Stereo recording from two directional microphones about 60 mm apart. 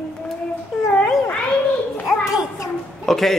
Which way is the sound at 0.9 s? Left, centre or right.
Centre.